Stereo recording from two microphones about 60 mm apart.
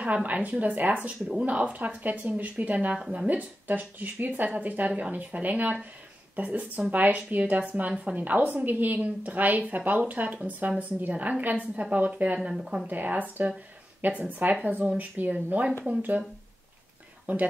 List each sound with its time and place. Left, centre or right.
0.0 s a woman's voice: right
3.3 s a woman's voice: right
12.4 s speech: centre
12.8 s a woman's voice: right
17.3 s a woman's voice: right